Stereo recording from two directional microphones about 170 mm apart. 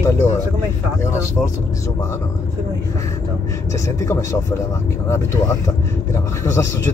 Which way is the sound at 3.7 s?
20° left (ahead or behind).